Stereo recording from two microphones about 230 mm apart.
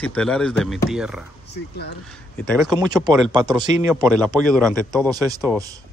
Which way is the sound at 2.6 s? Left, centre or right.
Centre.